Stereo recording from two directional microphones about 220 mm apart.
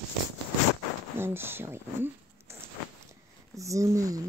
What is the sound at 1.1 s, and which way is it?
Speech, 10° right (ahead or behind).